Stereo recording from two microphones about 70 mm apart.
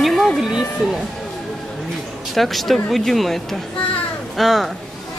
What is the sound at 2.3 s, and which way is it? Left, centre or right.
Speech, centre.